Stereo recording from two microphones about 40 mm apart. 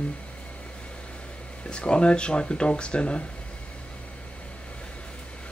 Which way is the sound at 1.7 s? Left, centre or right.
Left.